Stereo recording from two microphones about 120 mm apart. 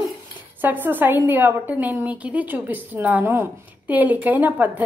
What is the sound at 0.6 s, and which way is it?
A woman's voice, 15° right (ahead or behind).